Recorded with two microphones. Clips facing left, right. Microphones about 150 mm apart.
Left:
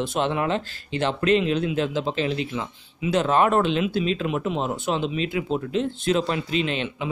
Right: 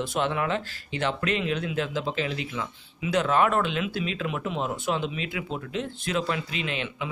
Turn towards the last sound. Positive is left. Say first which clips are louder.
# left 5 dB
turn(degrees=30)  # may be behind; listen again after turning